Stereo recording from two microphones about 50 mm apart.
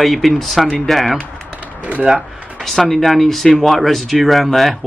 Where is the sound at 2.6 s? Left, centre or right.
Centre.